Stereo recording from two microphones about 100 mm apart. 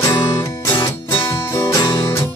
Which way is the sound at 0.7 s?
55° left (ahead or behind).